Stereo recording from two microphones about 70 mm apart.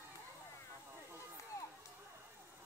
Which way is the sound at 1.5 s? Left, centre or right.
Left.